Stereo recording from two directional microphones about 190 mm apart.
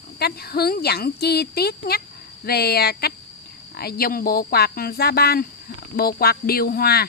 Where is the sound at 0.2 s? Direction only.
55° left (ahead or behind).